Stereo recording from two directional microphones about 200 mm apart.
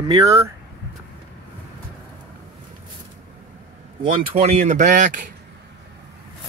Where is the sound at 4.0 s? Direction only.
30° right (ahead or behind).